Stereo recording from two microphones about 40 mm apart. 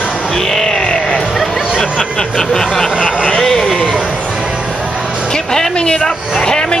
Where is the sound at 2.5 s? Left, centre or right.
Centre.